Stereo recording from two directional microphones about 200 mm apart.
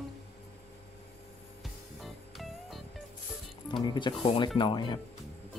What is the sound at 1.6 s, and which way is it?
Music, centre (ahead or behind).